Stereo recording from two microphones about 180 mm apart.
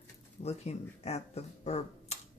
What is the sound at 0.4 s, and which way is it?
Speech, 35° left (ahead or behind).